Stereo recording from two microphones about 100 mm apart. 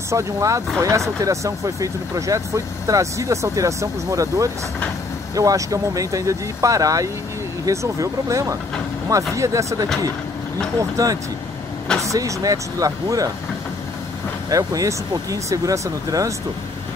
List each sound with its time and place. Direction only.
0.1 s speech: 30° right (ahead or behind)
14.5 s speech: 35° right (ahead or behind)